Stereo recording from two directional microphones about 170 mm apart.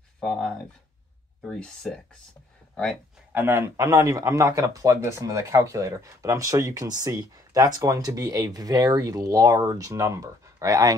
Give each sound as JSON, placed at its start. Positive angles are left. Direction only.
{"t": 0.2, "sound": "speech", "side_deg": 5}
{"t": 1.5, "sound": "speech", "side_deg": 5}
{"t": 3.3, "sound": "speech", "side_deg": -10}